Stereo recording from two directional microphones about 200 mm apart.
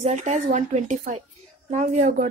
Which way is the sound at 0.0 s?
35° right (ahead or behind).